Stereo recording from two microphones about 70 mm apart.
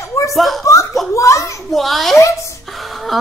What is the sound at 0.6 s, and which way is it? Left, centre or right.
Speech, left.